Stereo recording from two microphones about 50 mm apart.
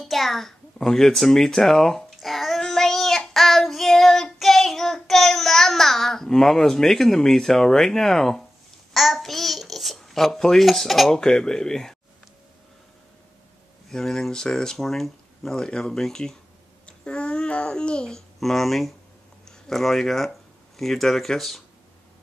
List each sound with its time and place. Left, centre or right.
0.0 s speech: centre
2.1 s child singing: centre
8.9 s babbling: centre
11.1 s speech: centre
13.8 s a child's voice: centre
18.4 s speech: centre